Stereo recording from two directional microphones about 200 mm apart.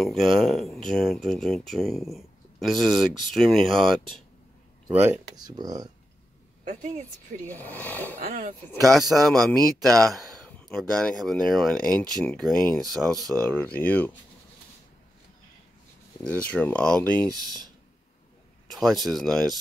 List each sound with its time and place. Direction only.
0.0 s speech: centre (ahead or behind)
4.8 s speech: 10° right (ahead or behind)
6.6 s a woman's voice: 40° right (ahead or behind)
7.4 s speech: 10° left (ahead or behind)
8.2 s speech: 45° right (ahead or behind)
9.1 s speech: centre (ahead or behind)
9.8 s speech: 15° right (ahead or behind)
10.1 s speech: centre (ahead or behind)
16.3 s speech: 5° left (ahead or behind)
18.7 s speech: centre (ahead or behind)